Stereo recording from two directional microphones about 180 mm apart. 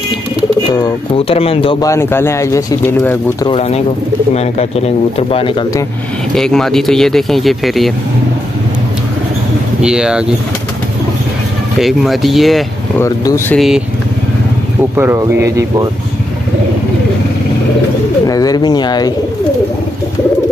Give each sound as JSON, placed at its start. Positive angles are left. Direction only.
{"t": 0.7, "sound": "speech", "side_deg": 25}
{"t": 1.8, "sound": "speech", "side_deg": 15}
{"t": 3.4, "sound": "speech", "side_deg": 35}
{"t": 6.3, "sound": "speech", "side_deg": 5}
{"t": 9.8, "sound": "speech", "side_deg": -5}
{"t": 11.8, "sound": "speech", "side_deg": 0}
{"t": 13.0, "sound": "speech", "side_deg": 15}
{"t": 13.6, "sound": "speech", "side_deg": -5}
{"t": 15.0, "sound": "speech", "side_deg": -15}
{"t": 18.2, "sound": "speech", "side_deg": 20}